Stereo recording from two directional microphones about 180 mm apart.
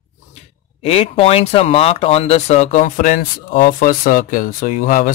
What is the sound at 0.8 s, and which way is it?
Speech, 35° left (ahead or behind).